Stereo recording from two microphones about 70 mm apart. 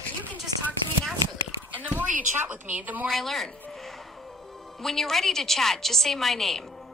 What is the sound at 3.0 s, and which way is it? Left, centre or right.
A woman's voice, centre.